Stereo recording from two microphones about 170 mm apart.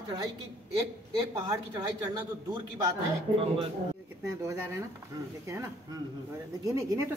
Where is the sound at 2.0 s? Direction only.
25° right (ahead or behind).